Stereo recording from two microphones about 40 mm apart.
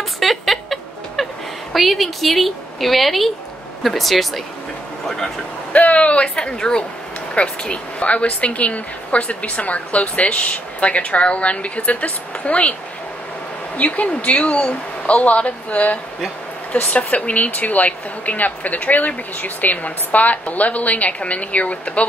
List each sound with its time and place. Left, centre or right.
0.2 s a sound: centre
1.7 s speech: centre
5.0 s a sound: centre
5.7 s speech: left
6.2 s speech: centre; by 12.7 s left
13.7 s speech: left